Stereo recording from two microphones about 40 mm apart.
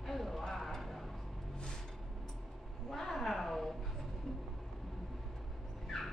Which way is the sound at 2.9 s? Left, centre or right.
Centre.